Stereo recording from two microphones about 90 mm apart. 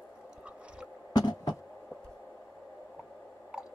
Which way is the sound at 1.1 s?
50° left (ahead or behind).